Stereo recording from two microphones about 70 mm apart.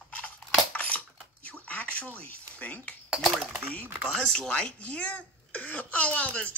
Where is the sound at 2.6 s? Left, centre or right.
Left.